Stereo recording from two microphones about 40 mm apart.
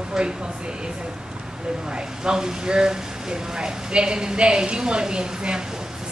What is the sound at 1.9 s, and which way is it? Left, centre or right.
A woman's voice, centre.